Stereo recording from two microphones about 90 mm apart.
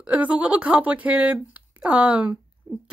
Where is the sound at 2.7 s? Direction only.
35° right (ahead or behind).